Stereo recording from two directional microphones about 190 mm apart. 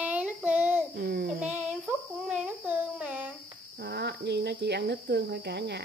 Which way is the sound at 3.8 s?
60° right (ahead or behind).